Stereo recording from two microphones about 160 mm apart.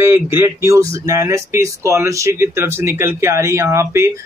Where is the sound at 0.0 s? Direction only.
15° right (ahead or behind).